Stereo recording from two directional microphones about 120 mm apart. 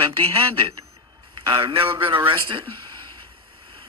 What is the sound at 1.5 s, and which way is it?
Speech, 45° right (ahead or behind).